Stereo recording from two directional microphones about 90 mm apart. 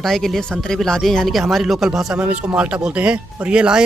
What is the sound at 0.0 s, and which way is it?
Speech, 5° left (ahead or behind).